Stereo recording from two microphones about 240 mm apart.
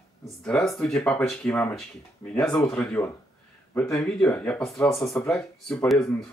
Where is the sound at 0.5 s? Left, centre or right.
Centre.